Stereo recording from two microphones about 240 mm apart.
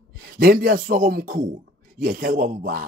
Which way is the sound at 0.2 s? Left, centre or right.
Right.